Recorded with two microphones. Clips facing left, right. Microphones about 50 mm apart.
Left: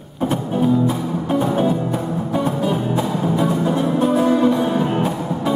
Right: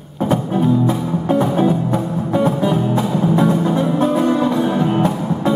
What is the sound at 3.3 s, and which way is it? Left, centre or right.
Music, right.